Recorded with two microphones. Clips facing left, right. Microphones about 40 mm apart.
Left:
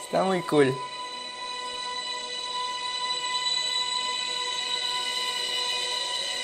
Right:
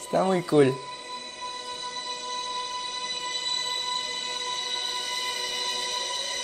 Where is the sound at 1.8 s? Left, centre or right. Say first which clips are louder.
Left 1 dB; left.